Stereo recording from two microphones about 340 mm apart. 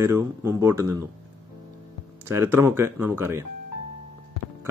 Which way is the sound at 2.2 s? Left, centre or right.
Centre.